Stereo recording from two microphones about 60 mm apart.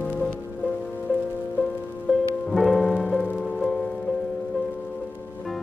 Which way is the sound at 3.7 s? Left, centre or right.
Centre.